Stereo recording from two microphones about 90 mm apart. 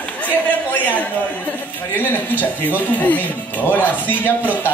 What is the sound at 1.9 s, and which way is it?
Speech, 20° left (ahead or behind).